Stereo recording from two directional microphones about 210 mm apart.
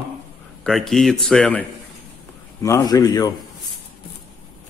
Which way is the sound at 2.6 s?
15° left (ahead or behind).